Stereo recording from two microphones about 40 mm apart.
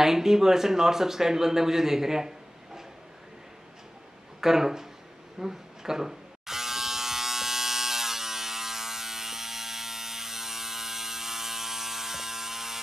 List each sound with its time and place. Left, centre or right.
0.0 s a man's voice: centre
4.4 s speech: centre
5.4 s electric shaver: centre